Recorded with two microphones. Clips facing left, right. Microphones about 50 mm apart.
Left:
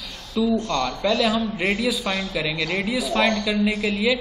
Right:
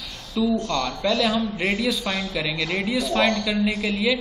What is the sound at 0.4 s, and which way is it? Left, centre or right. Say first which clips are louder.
A man's voice: left 1 dB; centre.